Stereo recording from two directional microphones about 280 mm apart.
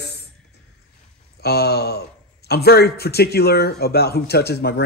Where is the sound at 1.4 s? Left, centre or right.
Left.